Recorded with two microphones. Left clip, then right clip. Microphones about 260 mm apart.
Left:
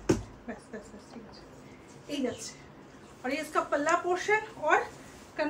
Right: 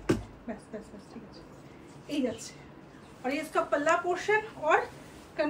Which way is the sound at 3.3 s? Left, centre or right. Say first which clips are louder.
Right 1 dB; centre.